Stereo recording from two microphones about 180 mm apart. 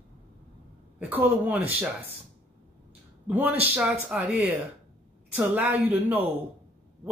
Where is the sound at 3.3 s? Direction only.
10° right (ahead or behind).